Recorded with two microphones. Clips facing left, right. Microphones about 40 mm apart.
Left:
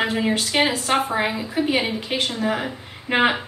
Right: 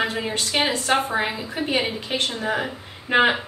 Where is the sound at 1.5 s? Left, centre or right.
Centre.